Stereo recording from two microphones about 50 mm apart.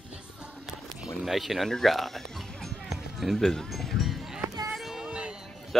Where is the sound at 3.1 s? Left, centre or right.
Centre.